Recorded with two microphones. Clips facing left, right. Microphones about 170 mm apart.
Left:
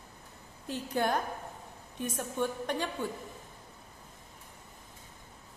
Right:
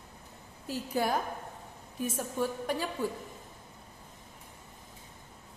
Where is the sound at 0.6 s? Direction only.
5° right (ahead or behind).